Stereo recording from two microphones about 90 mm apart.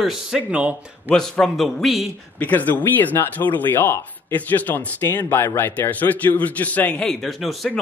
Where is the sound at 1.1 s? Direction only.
5° left (ahead or behind).